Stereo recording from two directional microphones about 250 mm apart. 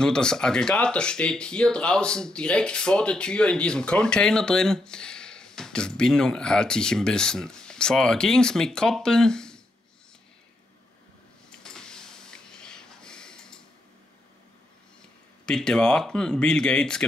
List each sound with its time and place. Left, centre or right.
0.0 s speech: centre
11.6 s a sound: centre
15.4 s speech: centre